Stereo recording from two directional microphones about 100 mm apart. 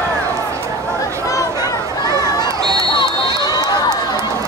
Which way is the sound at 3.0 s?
45° left (ahead or behind).